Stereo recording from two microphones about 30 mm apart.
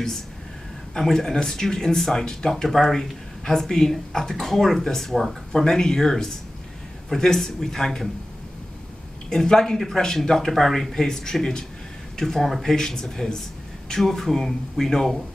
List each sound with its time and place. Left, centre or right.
0.9 s speech: centre
9.3 s speech: centre
12.6 s speech: centre